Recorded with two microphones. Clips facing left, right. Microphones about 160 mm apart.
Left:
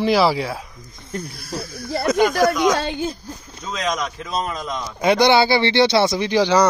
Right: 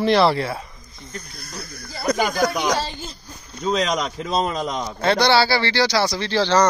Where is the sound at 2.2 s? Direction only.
65° left (ahead or behind).